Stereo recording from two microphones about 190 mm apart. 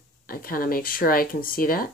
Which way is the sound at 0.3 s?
50° left (ahead or behind).